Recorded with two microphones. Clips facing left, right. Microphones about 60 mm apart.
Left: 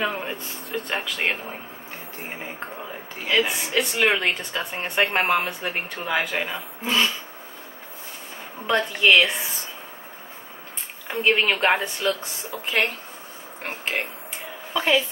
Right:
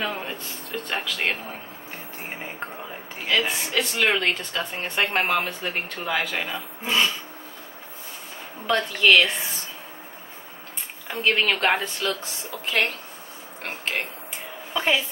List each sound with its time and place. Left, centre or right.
0.0 s speech: centre
3.3 s speech: centre
8.6 s speech: centre
11.1 s speech: centre
14.7 s a sound: centre